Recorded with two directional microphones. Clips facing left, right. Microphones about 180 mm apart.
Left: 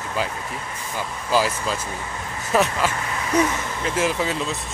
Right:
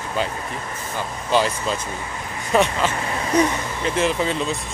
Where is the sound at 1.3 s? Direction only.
5° left (ahead or behind).